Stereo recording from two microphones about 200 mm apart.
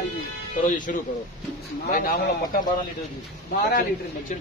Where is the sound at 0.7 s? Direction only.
40° left (ahead or behind).